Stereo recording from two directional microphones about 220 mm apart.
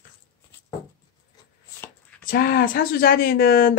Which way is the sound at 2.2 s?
45° left (ahead or behind).